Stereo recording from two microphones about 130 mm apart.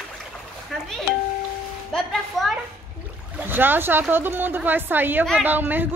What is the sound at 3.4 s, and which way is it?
A woman's voice, 15° right (ahead or behind).